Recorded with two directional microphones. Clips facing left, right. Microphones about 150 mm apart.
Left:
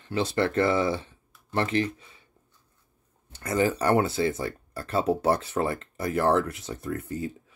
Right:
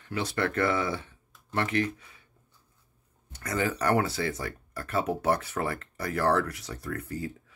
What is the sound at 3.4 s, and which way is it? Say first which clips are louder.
Speech: left 4 dB; 25° left (ahead or behind).